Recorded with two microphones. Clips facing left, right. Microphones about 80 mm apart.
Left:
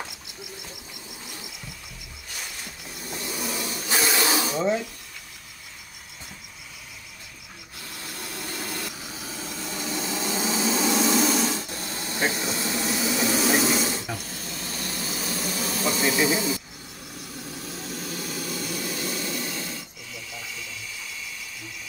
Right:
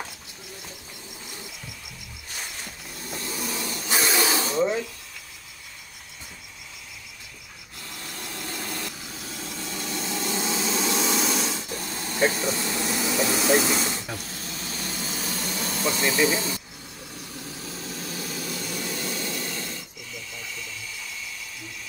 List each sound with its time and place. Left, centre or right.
3.1 s vehicle: centre
4.2 s snake: centre
7.9 s vehicle: centre